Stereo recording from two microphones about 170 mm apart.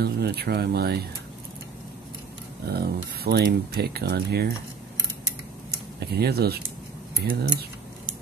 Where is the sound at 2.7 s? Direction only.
70° right (ahead or behind).